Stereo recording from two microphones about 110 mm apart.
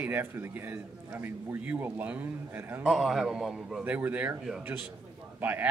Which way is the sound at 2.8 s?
Centre (ahead or behind).